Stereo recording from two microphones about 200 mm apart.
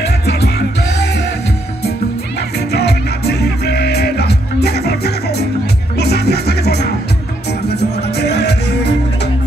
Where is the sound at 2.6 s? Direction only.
55° left (ahead or behind).